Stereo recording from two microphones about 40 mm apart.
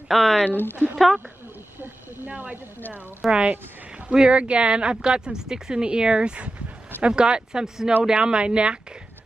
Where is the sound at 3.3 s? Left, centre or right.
Right.